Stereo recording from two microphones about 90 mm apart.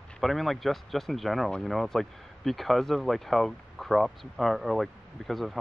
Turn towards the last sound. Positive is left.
turn(degrees=0)  # may be behind; listen again after turning